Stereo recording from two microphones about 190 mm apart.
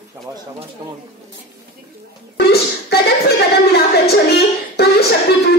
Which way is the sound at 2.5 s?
55° left (ahead or behind).